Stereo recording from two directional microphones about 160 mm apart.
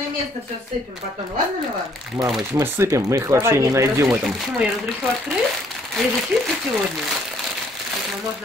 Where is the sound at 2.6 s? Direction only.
20° right (ahead or behind).